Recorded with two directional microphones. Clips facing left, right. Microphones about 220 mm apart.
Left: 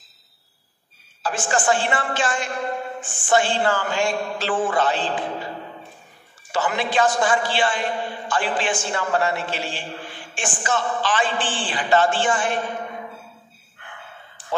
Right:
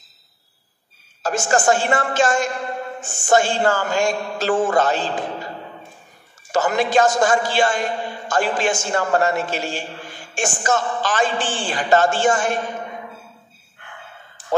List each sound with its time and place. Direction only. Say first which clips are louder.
1.2 s a man's voice: right 4 dB; 45° right (ahead or behind)
6.5 s a man's voice: right 5 dB; 45° right (ahead or behind)